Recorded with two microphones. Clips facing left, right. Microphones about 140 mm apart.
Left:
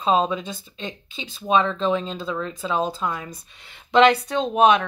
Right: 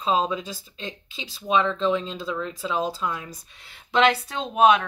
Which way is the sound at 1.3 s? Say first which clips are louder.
Left 2 dB; 50° left (ahead or behind).